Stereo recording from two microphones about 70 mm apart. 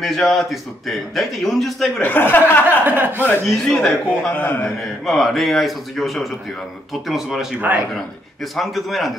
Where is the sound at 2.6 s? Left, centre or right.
Right.